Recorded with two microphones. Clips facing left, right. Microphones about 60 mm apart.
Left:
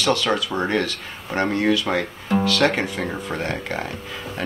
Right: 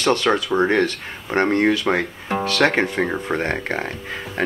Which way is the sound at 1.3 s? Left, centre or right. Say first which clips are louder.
Right 3 dB; right.